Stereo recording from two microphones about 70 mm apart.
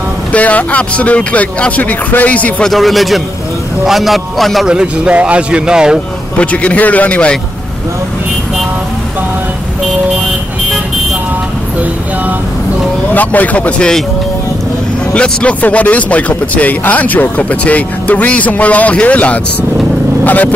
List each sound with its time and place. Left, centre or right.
0.3 s speech: left
2.6 s a man's voice: centre
4.6 s a man's voice: centre
6.3 s speech: centre
13.1 s speech: left
15.1 s speech: centre